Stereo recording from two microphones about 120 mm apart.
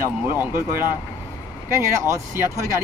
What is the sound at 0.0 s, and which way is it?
Speech, 20° right (ahead or behind).